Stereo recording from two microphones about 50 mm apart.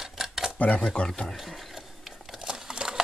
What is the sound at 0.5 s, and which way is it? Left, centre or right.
Speech, left.